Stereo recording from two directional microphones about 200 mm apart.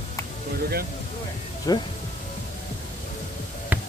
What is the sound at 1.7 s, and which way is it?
Speech, 20° left (ahead or behind).